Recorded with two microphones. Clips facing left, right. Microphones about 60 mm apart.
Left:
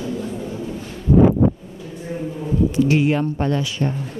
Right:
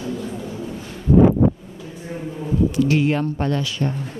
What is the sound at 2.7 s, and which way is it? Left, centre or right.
Speech, centre.